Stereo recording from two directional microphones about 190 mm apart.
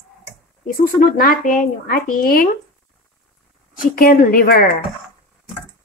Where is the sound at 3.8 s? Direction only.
50° left (ahead or behind).